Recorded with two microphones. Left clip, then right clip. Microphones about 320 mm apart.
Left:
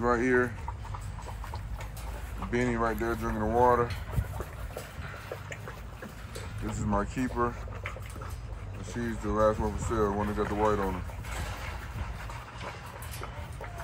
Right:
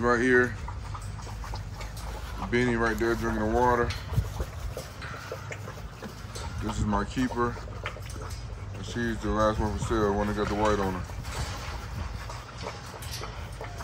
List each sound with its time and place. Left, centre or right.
0.0 s speech: centre
2.5 s speech: centre
6.9 s speech: centre
8.8 s speech: centre